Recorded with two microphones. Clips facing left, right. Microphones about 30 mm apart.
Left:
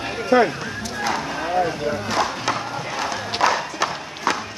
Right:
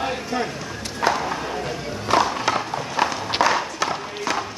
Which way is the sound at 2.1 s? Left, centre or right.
Right.